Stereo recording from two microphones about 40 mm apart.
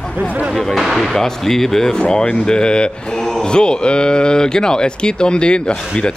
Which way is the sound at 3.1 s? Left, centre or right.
Centre.